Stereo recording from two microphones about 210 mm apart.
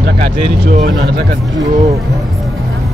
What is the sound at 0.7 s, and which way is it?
Speech, 45° right (ahead or behind).